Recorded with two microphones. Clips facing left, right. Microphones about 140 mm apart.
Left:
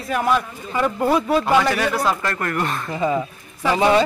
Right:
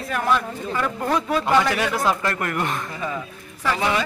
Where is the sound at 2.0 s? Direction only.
10° right (ahead or behind).